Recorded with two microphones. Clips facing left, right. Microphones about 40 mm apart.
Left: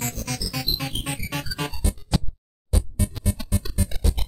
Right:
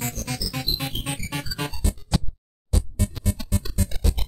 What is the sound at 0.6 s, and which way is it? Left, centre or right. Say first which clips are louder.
Music: left 1 dB; right.